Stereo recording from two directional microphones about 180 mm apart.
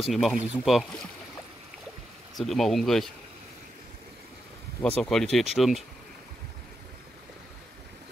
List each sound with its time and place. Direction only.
0.0 s speech: centre (ahead or behind)
2.3 s speech: centre (ahead or behind)
4.8 s speech: 5° left (ahead or behind)